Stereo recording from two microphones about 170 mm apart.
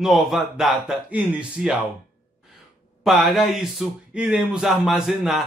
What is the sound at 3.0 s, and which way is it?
Speech, centre (ahead or behind).